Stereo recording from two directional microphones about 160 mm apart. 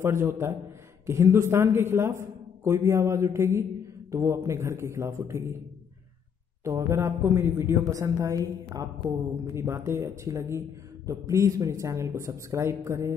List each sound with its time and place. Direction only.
0.0 s a man's voice: 15° right (ahead or behind)
6.6 s a man's voice: 15° right (ahead or behind)